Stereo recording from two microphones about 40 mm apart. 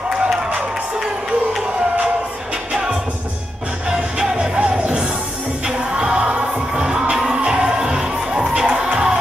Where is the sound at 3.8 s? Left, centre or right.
Right.